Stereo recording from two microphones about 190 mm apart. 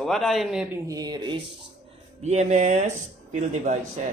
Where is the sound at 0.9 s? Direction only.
20° right (ahead or behind).